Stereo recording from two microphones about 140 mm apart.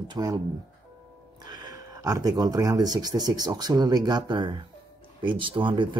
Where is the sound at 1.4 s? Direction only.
30° right (ahead or behind).